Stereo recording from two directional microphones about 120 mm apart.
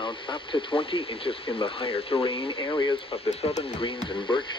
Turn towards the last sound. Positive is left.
turn(degrees=45)  # may be behind; listen again after turning